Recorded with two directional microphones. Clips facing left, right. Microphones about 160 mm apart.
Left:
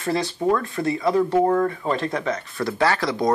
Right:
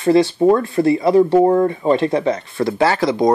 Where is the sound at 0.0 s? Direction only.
30° right (ahead or behind).